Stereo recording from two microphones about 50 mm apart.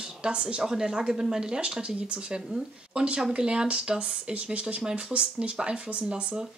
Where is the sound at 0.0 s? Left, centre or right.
Centre.